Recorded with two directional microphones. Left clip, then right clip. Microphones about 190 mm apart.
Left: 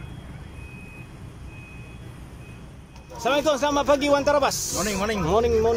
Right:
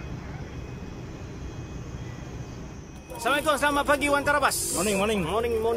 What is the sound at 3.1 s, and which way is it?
Speech, 15° left (ahead or behind).